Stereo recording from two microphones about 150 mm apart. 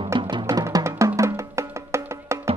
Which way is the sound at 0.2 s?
30° right (ahead or behind).